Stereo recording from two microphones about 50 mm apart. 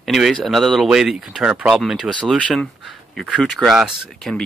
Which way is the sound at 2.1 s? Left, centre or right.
Right.